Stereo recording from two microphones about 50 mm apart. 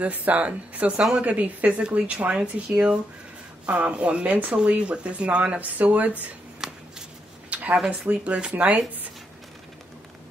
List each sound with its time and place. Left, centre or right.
0.0 s speech: right
6.6 s shuffling cards: centre
7.4 s a sound: right
8.1 s speech: right